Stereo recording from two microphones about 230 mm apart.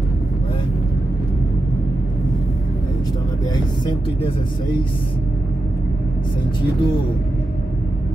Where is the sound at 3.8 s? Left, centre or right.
Left.